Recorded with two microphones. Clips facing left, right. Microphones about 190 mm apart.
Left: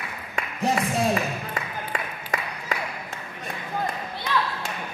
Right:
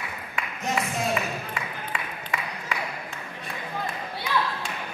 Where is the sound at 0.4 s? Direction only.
35° left (ahead or behind).